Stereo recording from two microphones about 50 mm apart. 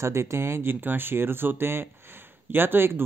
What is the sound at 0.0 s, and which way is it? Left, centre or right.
Speech, right.